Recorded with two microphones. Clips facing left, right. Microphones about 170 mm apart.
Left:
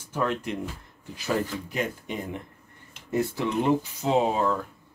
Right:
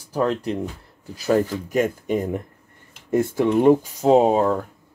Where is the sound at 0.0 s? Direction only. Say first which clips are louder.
Right 6 dB; 35° right (ahead or behind).